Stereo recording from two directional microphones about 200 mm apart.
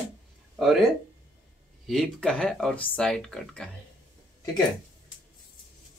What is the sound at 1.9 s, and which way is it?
Speech, centre (ahead or behind).